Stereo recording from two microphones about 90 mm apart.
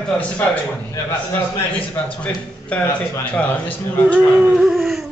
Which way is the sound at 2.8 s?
30° left (ahead or behind).